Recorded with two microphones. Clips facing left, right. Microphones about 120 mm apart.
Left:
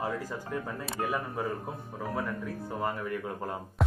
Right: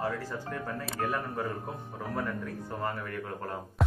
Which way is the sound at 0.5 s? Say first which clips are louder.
Left 2 dB; 15° left (ahead or behind).